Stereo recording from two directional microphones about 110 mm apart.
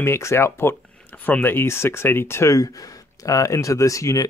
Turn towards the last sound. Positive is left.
turn(degrees=30)  # may be behind; listen again after turning